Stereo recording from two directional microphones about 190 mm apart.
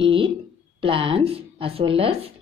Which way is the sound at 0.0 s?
25° right (ahead or behind).